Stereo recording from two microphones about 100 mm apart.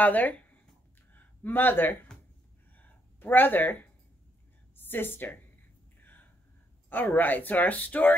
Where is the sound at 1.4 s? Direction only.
20° left (ahead or behind).